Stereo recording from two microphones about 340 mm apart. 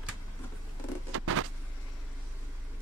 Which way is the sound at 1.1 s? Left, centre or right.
Right.